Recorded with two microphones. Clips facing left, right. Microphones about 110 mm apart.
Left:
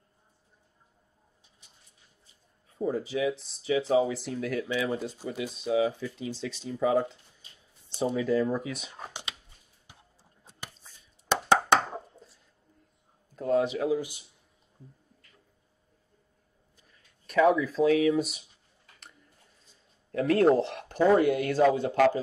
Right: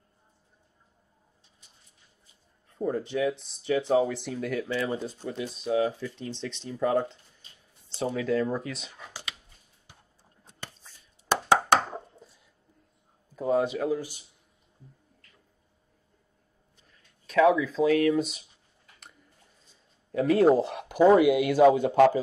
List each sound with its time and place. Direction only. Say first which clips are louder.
2.7 s speech: right 1 dB; 5° left (ahead or behind)
7.9 s a sound: left 1 dB; 15° left (ahead or behind)
8.2 s speech: even; centre (ahead or behind)
13.4 s speech: even; 5° right (ahead or behind)
17.3 s speech: right 1 dB; centre (ahead or behind)
20.1 s speech: right 1 dB; centre (ahead or behind); by 22.2 s 15° right (ahead or behind)